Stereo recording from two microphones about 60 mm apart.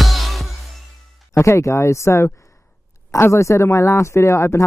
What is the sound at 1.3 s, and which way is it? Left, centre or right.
Speech, left.